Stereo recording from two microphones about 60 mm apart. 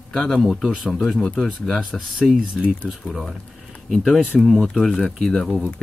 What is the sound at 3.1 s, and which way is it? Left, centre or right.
Speech, centre.